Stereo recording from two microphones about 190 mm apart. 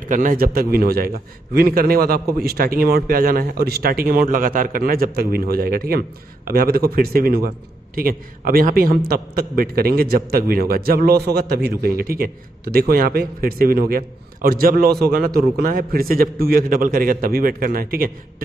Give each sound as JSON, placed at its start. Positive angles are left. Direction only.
{"t": 0.0, "sound": "a man's voice", "side_deg": -45}